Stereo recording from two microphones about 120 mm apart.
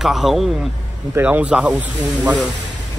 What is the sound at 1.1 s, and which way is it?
Speech, 15° right (ahead or behind).